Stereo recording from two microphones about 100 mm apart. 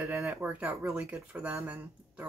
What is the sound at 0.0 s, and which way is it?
Speech, 5° right (ahead or behind).